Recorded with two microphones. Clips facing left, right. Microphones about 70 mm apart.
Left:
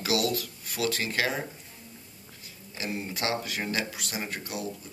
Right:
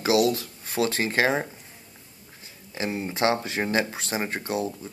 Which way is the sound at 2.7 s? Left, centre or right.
Right.